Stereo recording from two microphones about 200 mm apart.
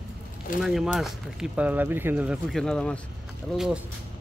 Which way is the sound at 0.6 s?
Centre (ahead or behind).